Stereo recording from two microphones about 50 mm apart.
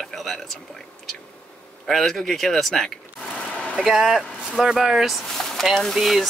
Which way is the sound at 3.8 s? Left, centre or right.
Centre.